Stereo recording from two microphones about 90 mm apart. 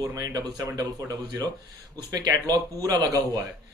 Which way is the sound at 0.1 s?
40° right (ahead or behind).